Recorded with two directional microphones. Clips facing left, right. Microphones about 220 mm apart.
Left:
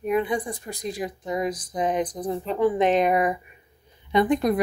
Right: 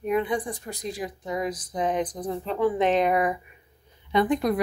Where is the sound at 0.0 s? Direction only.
10° left (ahead or behind).